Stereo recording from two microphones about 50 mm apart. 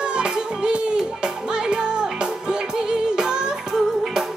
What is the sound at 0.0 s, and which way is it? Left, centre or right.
Music, centre.